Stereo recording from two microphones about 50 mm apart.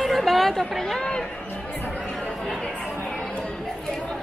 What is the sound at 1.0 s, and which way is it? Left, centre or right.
Chatter, centre.